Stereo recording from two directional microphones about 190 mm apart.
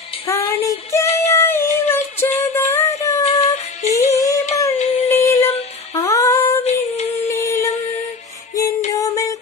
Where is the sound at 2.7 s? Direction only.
15° left (ahead or behind).